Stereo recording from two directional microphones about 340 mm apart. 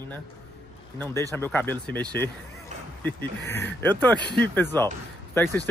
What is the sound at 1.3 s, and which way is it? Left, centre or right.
Speech, centre.